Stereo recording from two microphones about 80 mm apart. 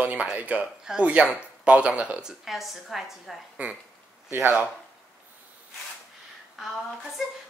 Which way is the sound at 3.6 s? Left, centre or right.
Centre.